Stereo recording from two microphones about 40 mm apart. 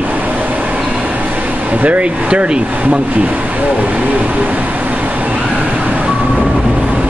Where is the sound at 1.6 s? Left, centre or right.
Right.